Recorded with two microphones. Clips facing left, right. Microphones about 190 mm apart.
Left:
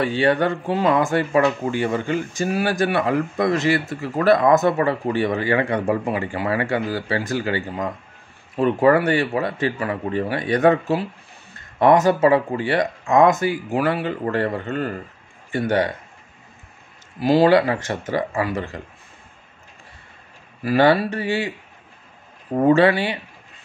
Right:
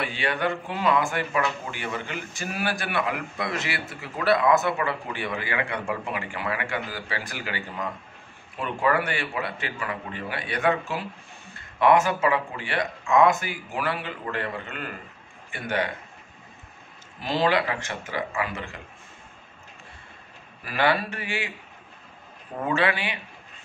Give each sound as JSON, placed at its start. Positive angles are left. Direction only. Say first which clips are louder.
{"t": 0.2, "sound": "speech", "louder": "left 7 dB", "side_deg": 40}
{"t": 8.5, "sound": "speech", "louder": "left 9 dB", "side_deg": 35}
{"t": 17.3, "sound": "speech", "louder": "left 9 dB", "side_deg": 40}
{"t": 20.6, "sound": "speech", "louder": "left 8 dB", "side_deg": 35}
{"t": 22.6, "sound": "speech", "louder": "left 10 dB", "side_deg": 40}